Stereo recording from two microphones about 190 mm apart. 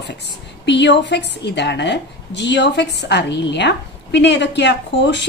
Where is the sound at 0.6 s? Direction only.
65° left (ahead or behind).